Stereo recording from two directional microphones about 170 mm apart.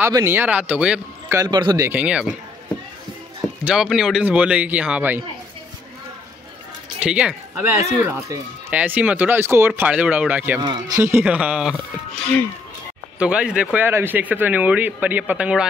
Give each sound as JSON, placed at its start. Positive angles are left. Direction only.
{"t": 0.0, "sound": "speech", "side_deg": -15}
{"t": 1.4, "sound": "a man's voice", "side_deg": -25}
{"t": 1.9, "sound": "speech", "side_deg": -5}
{"t": 3.6, "sound": "speech", "side_deg": -5}
{"t": 7.0, "sound": "speech", "side_deg": -5}
{"t": 10.6, "sound": "speech", "side_deg": -25}
{"t": 13.2, "sound": "speech", "side_deg": -5}